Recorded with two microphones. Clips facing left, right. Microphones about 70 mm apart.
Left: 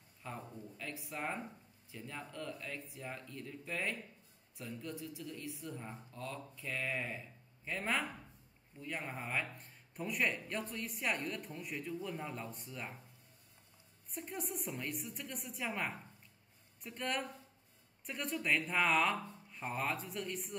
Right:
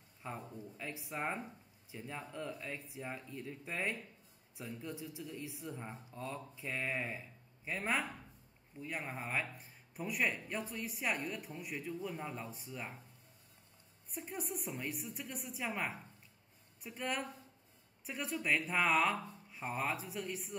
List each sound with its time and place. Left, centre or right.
0.2 s speech: centre
14.1 s speech: centre